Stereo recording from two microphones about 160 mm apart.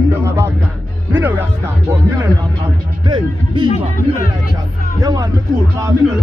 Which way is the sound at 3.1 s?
30° right (ahead or behind).